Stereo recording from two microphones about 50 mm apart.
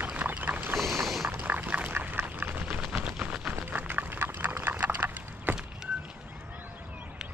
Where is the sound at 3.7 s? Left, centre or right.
Right.